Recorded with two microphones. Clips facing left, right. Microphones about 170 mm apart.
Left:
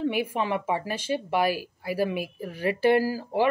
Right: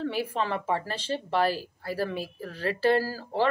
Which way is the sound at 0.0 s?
15° left (ahead or behind).